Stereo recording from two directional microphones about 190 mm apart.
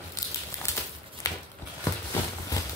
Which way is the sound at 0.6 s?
15° left (ahead or behind).